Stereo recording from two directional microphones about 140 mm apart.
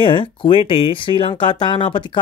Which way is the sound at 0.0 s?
35° left (ahead or behind).